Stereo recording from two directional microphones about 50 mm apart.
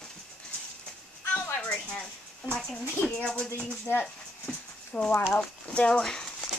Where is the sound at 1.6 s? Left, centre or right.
Left.